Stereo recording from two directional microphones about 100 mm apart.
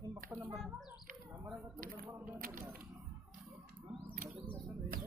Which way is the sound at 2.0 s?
20° right (ahead or behind).